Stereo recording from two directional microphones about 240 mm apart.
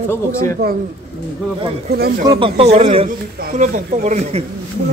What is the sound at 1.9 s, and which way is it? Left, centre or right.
Speech, right.